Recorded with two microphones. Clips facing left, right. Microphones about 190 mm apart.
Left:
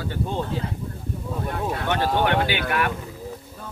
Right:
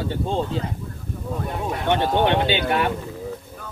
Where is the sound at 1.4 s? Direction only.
20° right (ahead or behind).